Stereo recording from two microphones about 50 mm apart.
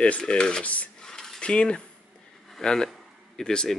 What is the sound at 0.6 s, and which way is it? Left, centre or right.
Speech, left.